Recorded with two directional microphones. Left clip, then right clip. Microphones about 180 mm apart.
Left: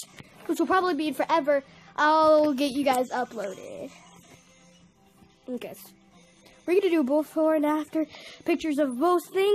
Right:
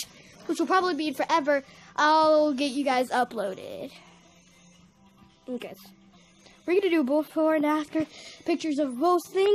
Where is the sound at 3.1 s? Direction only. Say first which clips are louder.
Right 4 dB; 25° right (ahead or behind).